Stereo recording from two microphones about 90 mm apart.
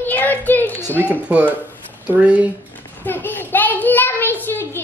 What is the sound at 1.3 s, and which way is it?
Speech, 15° right (ahead or behind).